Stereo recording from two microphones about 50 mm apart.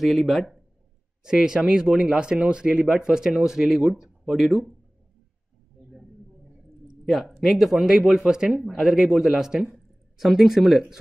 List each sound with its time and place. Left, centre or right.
0.0 s speech: centre
1.2 s a man's voice: centre
7.1 s a man's voice: centre